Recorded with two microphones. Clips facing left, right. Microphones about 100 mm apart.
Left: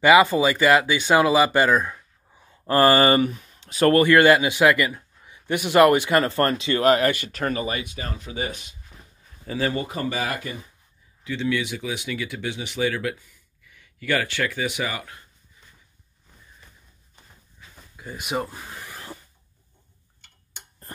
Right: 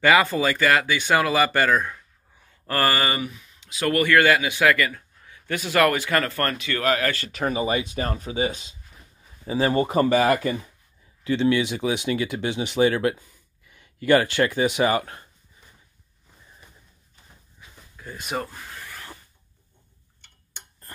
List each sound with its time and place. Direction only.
0.0 s speech: 15° left (ahead or behind); by 4.0 s 40° left (ahead or behind)
4.0 s a man's voice: 25° left (ahead or behind)
7.2 s speech: 5° right (ahead or behind)
7.5 s speech: 25° right (ahead or behind)
8.0 s speech: 50° right (ahead or behind)
8.3 s speech: 30° right (ahead or behind)
9.9 s speech: 55° right (ahead or behind)
11.2 s speech: 40° right (ahead or behind)
17.9 s a sound: 10° left (ahead or behind)